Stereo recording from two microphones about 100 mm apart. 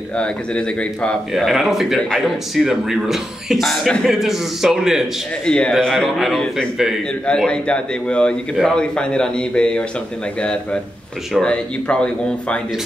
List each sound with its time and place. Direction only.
0.2 s a man's voice: 10° left (ahead or behind)
1.3 s speech: centre (ahead or behind)
5.4 s speech: 10° left (ahead or behind)
7.2 s a man's voice: 10° left (ahead or behind)